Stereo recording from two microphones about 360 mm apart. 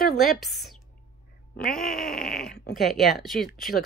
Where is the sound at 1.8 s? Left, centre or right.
Left.